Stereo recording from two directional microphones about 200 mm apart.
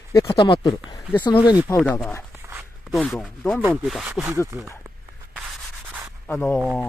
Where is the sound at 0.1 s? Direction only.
15° left (ahead or behind).